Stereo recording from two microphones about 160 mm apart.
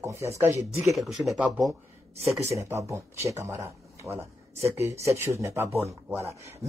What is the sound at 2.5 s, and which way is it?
Speech, 15° right (ahead or behind).